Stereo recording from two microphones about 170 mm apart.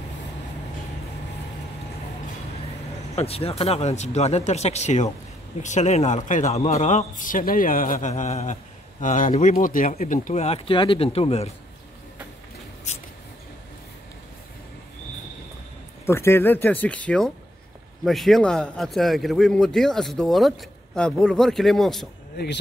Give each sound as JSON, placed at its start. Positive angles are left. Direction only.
{"t": 3.2, "sound": "a man's voice", "side_deg": 35}
{"t": 12.9, "sound": "a sound", "side_deg": 40}
{"t": 16.1, "sound": "a man's voice", "side_deg": 15}
{"t": 22.4, "sound": "speech", "side_deg": 85}